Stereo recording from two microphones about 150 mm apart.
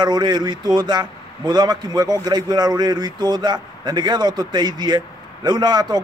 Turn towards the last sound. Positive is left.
turn(degrees=-30)  # may be behind; listen again after turning